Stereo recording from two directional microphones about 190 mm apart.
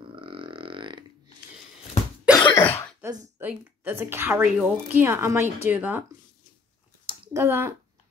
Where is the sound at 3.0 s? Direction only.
20° right (ahead or behind).